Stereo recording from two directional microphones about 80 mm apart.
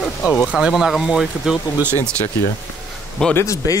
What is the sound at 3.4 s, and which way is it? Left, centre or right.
Speech, left.